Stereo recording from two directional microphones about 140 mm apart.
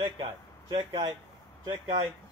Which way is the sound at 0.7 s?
35° right (ahead or behind).